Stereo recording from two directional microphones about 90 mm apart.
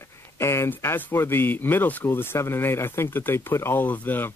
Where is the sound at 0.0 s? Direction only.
30° left (ahead or behind).